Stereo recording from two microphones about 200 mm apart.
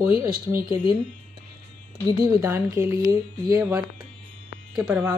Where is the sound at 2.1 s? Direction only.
15° right (ahead or behind).